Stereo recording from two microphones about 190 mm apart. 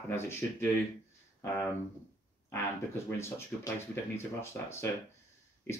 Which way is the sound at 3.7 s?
15° left (ahead or behind).